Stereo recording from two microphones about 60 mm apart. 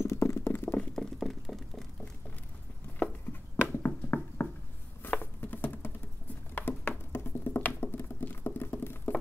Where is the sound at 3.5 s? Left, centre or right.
Left.